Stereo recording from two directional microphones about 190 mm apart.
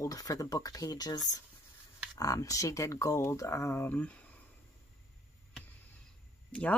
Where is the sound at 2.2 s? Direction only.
15° left (ahead or behind).